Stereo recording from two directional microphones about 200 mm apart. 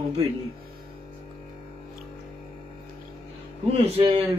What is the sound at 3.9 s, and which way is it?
Speech, 25° right (ahead or behind).